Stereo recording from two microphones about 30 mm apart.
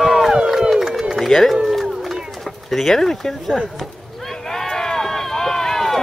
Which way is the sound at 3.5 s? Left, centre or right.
Centre.